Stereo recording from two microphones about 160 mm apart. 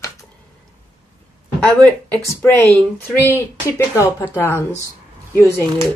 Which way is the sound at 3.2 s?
15° left (ahead or behind).